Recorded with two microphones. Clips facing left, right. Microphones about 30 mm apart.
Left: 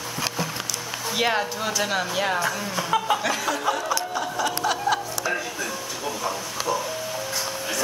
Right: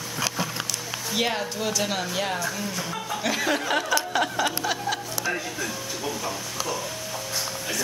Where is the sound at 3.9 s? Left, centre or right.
Right.